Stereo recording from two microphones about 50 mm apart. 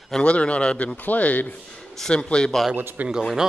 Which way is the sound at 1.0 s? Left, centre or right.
Left.